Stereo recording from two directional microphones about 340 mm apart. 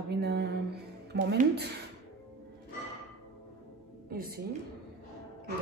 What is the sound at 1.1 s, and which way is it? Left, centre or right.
Speech, right.